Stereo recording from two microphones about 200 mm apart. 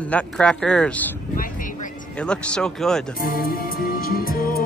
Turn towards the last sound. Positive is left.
turn(degrees=50)  # may be behind; listen again after turning